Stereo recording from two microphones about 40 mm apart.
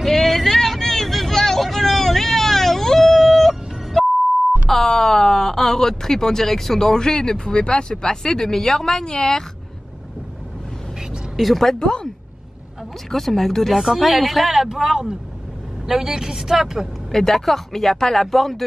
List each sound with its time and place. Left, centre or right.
0.0 s vehicle: centre
4.6 s speech: centre
11.0 s vehicle: centre
11.8 s speech: left
13.1 s a woman's voice: centre
17.1 s speech: centre